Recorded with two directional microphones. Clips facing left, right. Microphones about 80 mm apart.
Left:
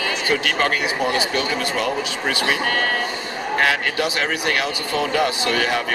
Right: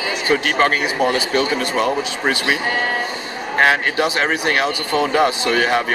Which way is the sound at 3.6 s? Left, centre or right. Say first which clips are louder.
Right 5 dB; right.